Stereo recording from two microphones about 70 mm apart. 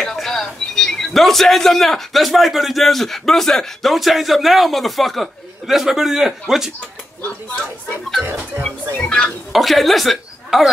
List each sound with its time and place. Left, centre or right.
0.0 s speech: centre
8.2 s speech: right
9.0 s speech: centre
9.5 s speech: centre